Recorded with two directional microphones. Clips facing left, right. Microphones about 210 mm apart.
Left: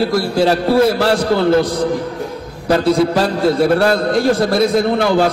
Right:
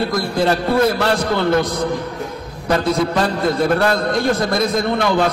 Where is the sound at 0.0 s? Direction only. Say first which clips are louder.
Left 4 dB; 30° left (ahead or behind).